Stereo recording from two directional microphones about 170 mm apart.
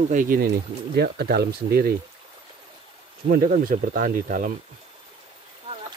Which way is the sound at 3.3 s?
60° right (ahead or behind).